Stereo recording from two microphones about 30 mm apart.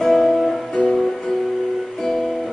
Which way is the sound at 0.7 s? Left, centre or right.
Left.